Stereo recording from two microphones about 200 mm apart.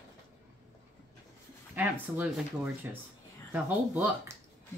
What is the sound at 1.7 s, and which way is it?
Speech, 10° right (ahead or behind).